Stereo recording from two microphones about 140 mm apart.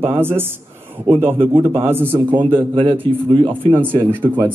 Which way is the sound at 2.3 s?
35° right (ahead or behind).